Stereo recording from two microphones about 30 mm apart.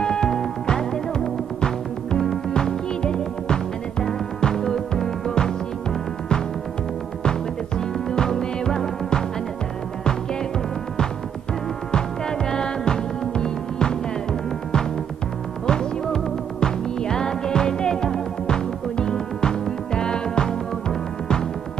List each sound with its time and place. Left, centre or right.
0.0 s music: left
2.5 s music: left
12.3 s music: left
15.6 s music: left